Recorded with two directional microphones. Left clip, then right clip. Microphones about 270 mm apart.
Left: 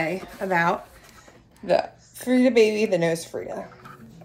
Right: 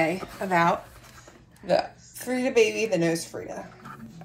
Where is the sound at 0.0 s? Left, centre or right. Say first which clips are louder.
Right 1 dB; centre.